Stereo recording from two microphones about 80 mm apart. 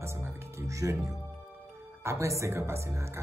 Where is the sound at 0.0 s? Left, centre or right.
Right.